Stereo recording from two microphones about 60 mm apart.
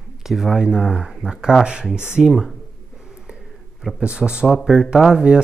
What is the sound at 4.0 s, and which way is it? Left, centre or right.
Speech, centre.